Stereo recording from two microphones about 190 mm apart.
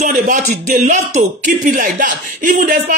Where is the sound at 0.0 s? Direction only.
45° right (ahead or behind).